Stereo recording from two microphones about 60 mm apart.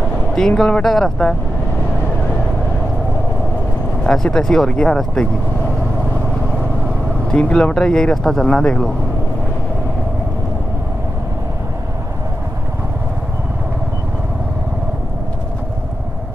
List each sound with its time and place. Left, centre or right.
0.4 s speech: centre
0.8 s speech: centre
4.0 s speech: centre
7.2 s speech: centre